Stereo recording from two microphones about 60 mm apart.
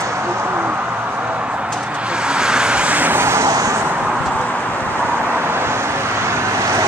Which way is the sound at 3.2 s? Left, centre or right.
Right.